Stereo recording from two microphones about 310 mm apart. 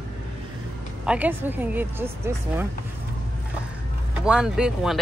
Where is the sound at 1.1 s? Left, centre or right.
Centre.